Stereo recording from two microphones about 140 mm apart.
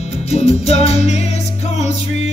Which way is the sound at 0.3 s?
50° left (ahead or behind).